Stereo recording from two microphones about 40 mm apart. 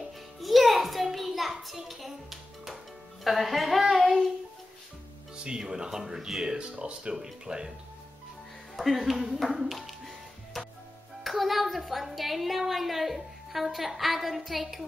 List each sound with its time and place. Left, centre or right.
0.4 s music: centre
3.3 s a woman's voice: centre
5.4 s speech: centre
8.7 s music: centre
11.2 s a woman's voice: centre